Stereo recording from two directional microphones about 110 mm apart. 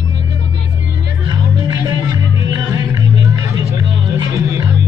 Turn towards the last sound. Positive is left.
turn(degrees=-30)  # may be behind; listen again after turning